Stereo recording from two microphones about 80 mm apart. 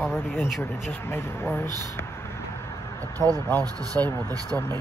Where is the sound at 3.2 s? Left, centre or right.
Left.